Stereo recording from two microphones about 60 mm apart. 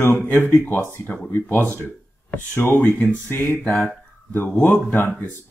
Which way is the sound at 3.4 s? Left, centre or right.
Left.